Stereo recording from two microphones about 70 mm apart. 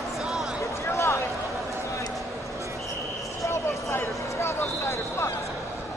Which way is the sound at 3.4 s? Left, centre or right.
Left.